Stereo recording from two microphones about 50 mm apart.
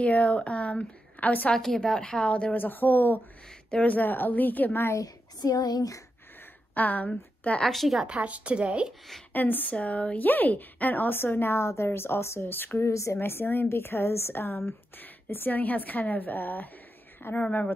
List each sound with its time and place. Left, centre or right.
0.0 s a woman's voice: left
1.5 s a woman's voice: centre
2.5 s a woman's voice: left
6.7 s a woman's voice: left
7.1 s a woman's voice: left
7.6 s a woman's voice: centre
8.1 s speech: right
9.3 s a woman's voice: left
11.5 s speech: left
13.2 s a woman's voice: left
17.2 s a woman's voice: left